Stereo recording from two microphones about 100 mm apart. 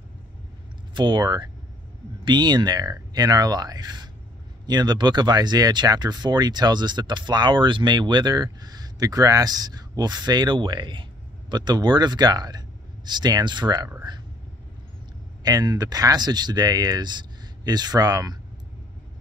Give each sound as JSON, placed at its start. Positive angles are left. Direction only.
{"t": 0.9, "sound": "speech", "side_deg": -50}
{"t": 15.4, "sound": "speech", "side_deg": -40}